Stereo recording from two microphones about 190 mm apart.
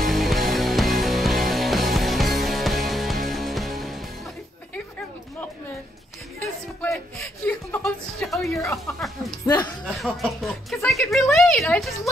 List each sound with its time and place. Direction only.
0.0 s music: centre (ahead or behind)
6.9 s chuckle: 5° left (ahead or behind)